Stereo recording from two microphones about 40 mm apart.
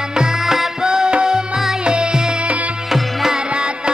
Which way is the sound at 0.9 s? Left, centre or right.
Right.